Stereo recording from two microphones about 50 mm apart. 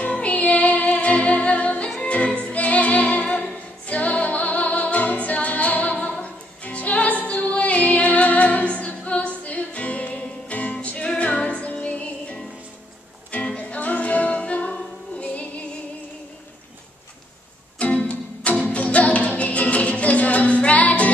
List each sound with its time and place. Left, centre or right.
0.1 s music: left
17.7 s music: left